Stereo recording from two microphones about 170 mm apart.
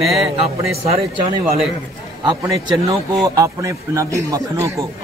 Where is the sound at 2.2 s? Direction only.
20° right (ahead or behind).